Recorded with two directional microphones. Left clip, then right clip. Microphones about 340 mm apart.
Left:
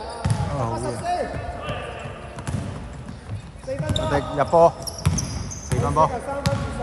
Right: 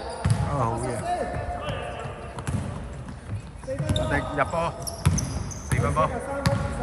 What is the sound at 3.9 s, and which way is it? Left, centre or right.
Basketball bounce, centre.